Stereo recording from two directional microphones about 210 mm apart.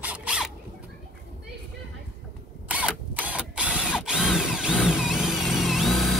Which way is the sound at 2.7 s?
5° right (ahead or behind).